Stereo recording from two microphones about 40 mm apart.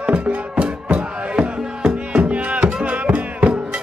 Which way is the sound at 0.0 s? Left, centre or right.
Right.